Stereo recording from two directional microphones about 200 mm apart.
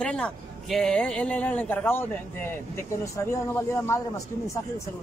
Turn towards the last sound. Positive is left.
turn(degrees=15)  # may be behind; listen again after turning